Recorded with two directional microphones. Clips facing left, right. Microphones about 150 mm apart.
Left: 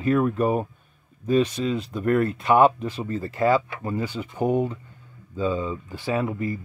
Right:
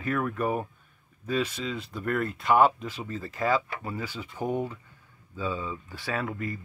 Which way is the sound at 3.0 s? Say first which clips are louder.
Left 7 dB; 55° left (ahead or behind).